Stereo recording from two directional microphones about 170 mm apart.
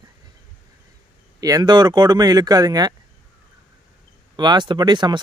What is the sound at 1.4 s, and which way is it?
Speech, 25° right (ahead or behind).